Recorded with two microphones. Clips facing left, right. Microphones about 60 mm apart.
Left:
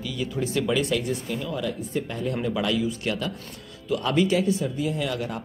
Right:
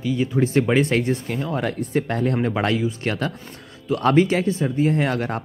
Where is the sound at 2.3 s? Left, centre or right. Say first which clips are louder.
Even; right.